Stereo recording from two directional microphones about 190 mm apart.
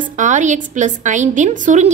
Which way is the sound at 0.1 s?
40° right (ahead or behind).